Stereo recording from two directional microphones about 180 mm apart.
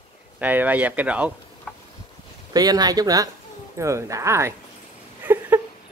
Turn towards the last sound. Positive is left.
turn(degrees=-10)  # may be behind; listen again after turning